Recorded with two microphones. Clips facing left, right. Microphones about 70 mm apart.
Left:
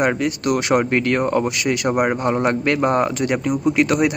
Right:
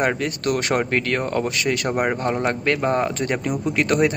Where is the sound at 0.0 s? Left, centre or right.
Centre.